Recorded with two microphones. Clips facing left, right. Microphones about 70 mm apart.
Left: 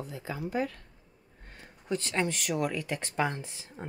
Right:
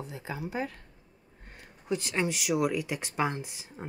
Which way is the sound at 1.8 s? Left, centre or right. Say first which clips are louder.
Even; centre.